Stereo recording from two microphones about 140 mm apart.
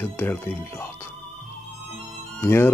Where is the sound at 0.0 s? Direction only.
15° left (ahead or behind).